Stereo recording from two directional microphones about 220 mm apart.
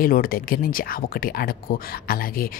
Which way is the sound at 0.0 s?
40° left (ahead or behind).